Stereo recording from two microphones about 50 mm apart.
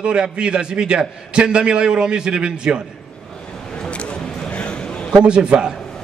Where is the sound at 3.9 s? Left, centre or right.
Left.